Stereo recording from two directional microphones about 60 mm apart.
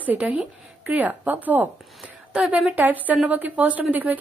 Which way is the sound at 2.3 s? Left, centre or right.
Centre.